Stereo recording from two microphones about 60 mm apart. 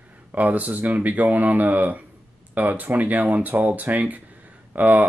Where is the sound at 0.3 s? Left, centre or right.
Right.